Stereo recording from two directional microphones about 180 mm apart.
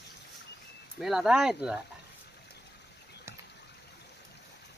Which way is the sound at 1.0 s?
5° right (ahead or behind).